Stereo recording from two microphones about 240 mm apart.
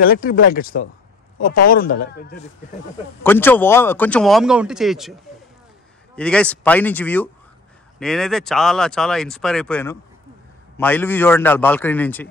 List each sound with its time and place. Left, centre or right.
0.0 s a man's voice: left
3.3 s speech: centre
6.1 s a man's voice: centre